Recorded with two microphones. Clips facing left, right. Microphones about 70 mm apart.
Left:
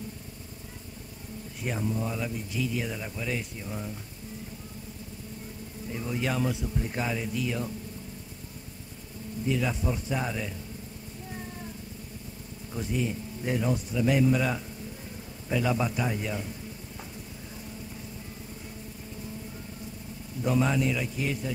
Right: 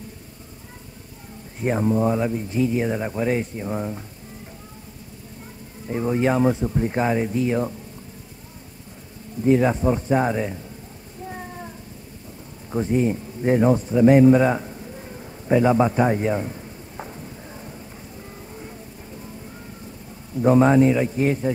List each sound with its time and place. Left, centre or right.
1.6 s speech: right
5.9 s speech: right
9.4 s speech: right
12.7 s a sound: right
20.4 s speech: right